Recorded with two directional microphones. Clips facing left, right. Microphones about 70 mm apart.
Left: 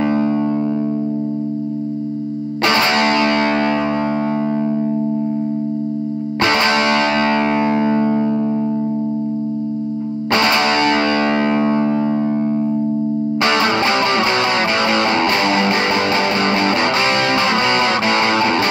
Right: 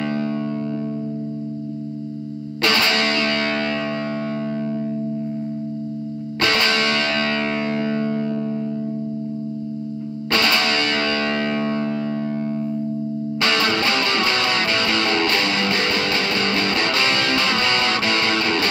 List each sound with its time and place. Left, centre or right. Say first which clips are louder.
0.0 s music: left 7 dB; left
2.6 s music: left 4 dB; left
6.4 s music: left 4 dB; left
10.3 s music: left 5 dB; left
13.4 s music: left 3 dB; left